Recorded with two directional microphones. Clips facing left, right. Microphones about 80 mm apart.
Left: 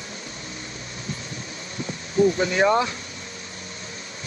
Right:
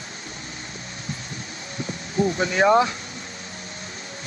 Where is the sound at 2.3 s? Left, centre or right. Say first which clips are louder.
Right 2 dB; right.